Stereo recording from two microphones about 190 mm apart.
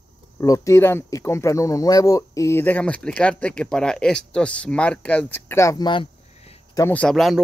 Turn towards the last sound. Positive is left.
turn(degrees=0)  # may be behind; listen again after turning